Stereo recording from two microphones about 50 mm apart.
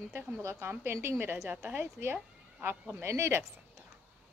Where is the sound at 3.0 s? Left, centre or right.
Right.